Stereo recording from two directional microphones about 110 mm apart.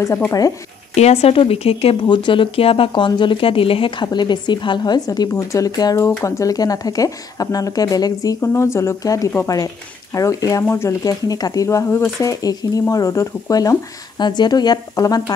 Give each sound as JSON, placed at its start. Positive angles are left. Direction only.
{"t": 0.9, "sound": "speech", "side_deg": 75}
{"t": 2.0, "sound": "a woman's voice", "side_deg": 45}